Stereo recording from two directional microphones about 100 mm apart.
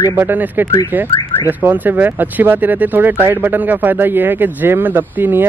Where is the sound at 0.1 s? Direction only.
20° right (ahead or behind).